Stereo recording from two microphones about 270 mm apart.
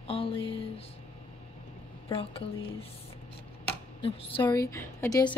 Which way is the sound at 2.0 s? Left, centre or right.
Left.